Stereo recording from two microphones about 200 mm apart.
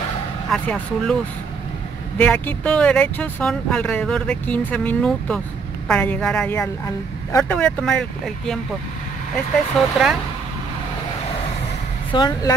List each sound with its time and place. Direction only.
0.5 s speech: 5° left (ahead or behind)
2.1 s speech: 5° left (ahead or behind)
9.8 s speech: centre (ahead or behind)
12.1 s speech: 20° left (ahead or behind)